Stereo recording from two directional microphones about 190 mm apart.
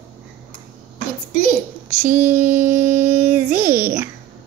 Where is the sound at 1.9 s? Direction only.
10° right (ahead or behind).